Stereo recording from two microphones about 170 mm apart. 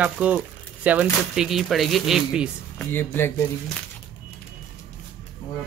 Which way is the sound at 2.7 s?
15° left (ahead or behind).